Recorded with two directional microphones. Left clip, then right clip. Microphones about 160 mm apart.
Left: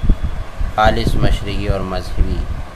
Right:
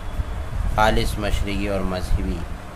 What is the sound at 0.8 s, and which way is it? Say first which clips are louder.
A man's voice: left 5 dB; 15° right (ahead or behind).